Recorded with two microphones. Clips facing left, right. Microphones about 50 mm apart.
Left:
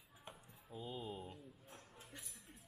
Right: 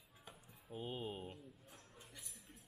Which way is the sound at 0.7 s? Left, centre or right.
Right.